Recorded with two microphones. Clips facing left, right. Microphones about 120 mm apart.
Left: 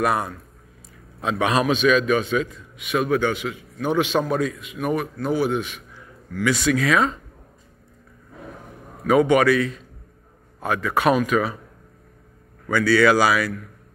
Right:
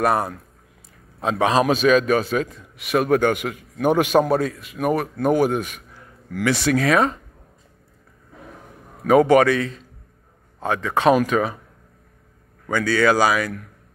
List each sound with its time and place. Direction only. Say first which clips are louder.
0.0 s a man's voice: right 2 dB; 35° right (ahead or behind)
6.8 s a man's voice: right 2 dB; 35° right (ahead or behind)
9.0 s a man's voice: right 2 dB; 35° right (ahead or behind)
12.8 s a man's voice: left 2 dB; 40° right (ahead or behind)
13.2 s a man's voice: even; 20° right (ahead or behind)